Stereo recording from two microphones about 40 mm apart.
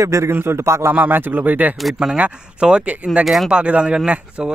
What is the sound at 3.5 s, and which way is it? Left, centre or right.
Speech, right.